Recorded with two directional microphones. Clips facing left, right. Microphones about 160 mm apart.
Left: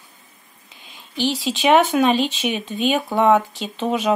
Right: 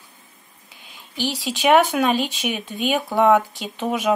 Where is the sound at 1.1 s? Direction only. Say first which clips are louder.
Left 4 dB; 15° right (ahead or behind).